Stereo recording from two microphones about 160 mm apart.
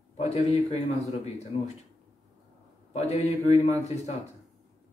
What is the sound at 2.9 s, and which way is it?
A man's voice, 40° left (ahead or behind).